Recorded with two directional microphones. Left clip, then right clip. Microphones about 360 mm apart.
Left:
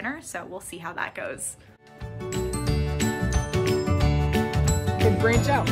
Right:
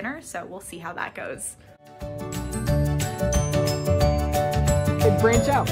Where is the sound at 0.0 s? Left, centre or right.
Centre.